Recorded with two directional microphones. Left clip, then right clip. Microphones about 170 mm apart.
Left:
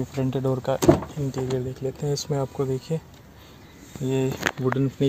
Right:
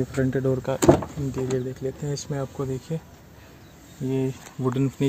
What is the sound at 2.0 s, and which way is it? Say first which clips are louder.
Speech: left 4 dB; 40° left (ahead or behind).